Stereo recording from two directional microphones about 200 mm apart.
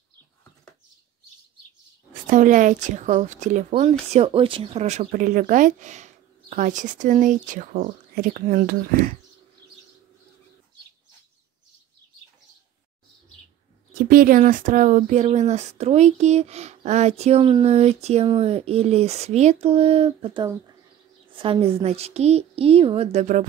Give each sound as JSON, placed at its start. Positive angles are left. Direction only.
{"t": 2.2, "sound": "speech", "side_deg": -40}
{"t": 13.9, "sound": "a woman's voice", "side_deg": -45}